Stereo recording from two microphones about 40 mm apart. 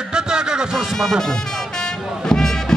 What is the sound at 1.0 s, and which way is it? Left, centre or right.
Music, centre.